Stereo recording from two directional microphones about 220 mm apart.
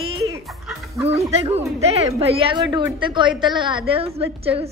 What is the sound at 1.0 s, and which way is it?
A woman's voice, 30° right (ahead or behind).